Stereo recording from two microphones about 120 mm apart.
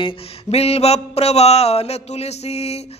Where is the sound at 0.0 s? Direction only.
60° left (ahead or behind).